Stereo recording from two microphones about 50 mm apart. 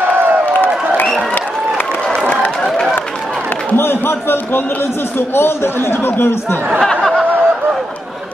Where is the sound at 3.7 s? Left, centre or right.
Left.